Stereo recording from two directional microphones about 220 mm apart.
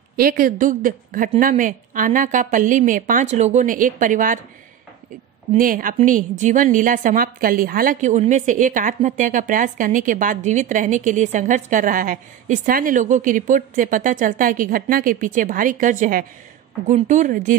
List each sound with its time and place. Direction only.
0.1 s a woman's voice: 40° right (ahead or behind)
5.5 s a woman's voice: 40° right (ahead or behind)